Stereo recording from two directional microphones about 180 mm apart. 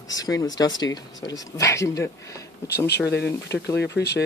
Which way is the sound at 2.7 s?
65° left (ahead or behind).